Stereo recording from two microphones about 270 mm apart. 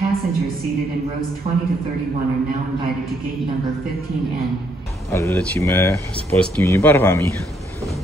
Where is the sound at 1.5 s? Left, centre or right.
Right.